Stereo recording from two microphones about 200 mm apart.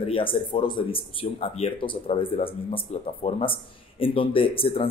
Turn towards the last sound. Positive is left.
turn(degrees=25)  # may be behind; listen again after turning